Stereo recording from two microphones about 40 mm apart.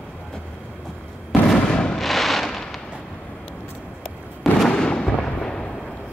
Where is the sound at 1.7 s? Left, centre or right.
Left.